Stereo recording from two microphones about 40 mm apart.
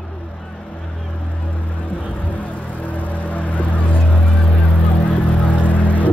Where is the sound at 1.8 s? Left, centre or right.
Left.